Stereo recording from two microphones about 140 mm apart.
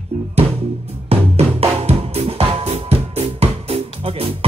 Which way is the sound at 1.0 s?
45° right (ahead or behind).